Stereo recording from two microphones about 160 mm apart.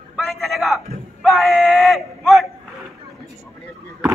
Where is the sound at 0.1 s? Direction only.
Centre (ahead or behind).